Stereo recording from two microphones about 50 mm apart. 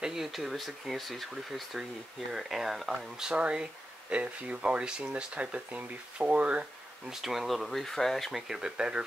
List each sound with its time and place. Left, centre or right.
0.0 s speech: centre
3.3 s speech: right
7.1 s speech: centre
8.3 s speech: centre